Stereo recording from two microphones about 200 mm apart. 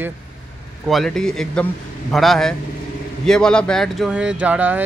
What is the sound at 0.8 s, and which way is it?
A man's voice, centre (ahead or behind).